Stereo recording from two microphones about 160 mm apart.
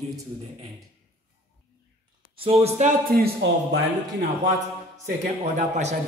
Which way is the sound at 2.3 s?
35° right (ahead or behind).